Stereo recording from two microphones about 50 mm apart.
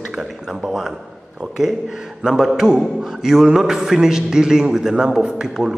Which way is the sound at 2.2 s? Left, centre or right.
Centre.